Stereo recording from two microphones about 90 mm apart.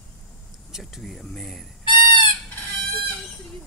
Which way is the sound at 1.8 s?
65° left (ahead or behind).